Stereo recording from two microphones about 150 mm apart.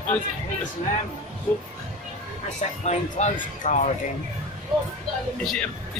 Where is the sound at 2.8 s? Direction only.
55° left (ahead or behind).